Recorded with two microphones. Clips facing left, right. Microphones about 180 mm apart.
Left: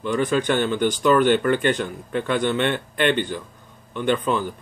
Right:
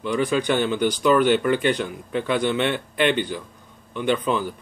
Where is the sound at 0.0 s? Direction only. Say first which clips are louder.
Left 1 dB; 45° left (ahead or behind).